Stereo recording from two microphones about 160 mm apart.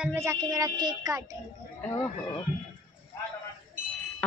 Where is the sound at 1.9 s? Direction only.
25° left (ahead or behind).